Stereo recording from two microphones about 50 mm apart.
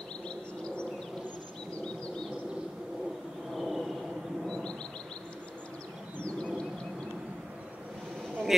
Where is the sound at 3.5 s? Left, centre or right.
Centre.